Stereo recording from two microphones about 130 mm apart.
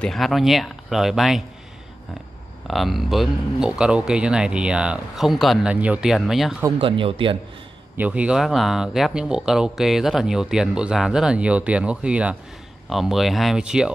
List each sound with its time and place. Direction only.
0.0 s speech: centre (ahead or behind)
2.7 s speech: centre (ahead or behind)
6.8 s speech: 45° right (ahead or behind)
8.0 s speech: 10° right (ahead or behind)